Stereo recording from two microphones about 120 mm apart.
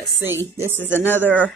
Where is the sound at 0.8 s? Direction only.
15° left (ahead or behind).